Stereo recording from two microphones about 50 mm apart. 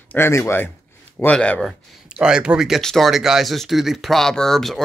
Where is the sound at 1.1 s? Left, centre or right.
Left.